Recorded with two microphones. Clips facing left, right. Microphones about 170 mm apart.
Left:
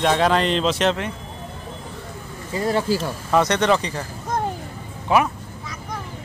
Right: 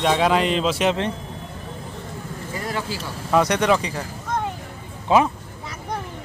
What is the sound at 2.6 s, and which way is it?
Speech, 30° left (ahead or behind).